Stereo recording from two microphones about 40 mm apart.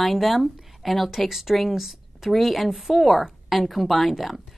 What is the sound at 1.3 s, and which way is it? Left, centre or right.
A woman's voice, centre.